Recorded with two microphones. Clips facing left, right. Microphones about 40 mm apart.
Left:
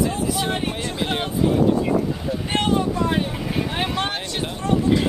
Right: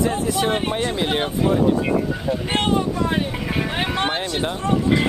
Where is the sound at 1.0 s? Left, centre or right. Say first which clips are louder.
Even; centre.